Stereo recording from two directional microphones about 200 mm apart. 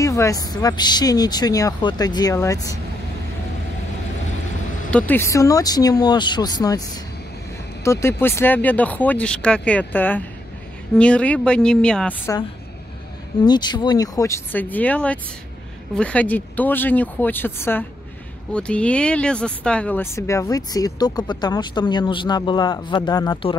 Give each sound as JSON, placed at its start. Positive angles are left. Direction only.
{"t": 0.0, "sound": "speech", "side_deg": 15}
{"t": 4.9, "sound": "speech", "side_deg": 10}
{"t": 7.8, "sound": "speech", "side_deg": 15}
{"t": 13.4, "sound": "speech", "side_deg": 20}